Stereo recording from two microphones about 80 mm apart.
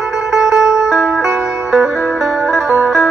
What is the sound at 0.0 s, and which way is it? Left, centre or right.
Music, centre.